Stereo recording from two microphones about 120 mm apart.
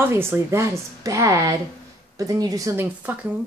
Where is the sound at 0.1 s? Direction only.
20° right (ahead or behind).